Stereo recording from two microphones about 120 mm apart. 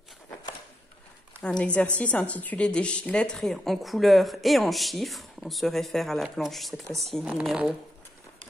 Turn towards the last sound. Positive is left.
turn(degrees=-5)  # may be behind; listen again after turning